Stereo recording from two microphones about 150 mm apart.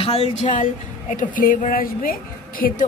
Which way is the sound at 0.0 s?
45° left (ahead or behind).